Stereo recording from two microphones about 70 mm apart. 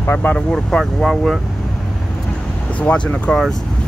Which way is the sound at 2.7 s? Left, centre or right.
Centre.